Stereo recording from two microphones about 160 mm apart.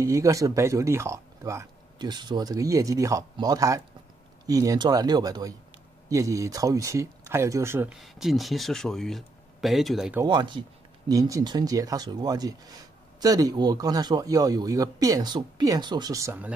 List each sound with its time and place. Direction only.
0.0 s speech: 20° right (ahead or behind)
8.0 s speech: centre (ahead or behind)
10.2 s speech: 30° right (ahead or behind); by 16.5 s 15° right (ahead or behind)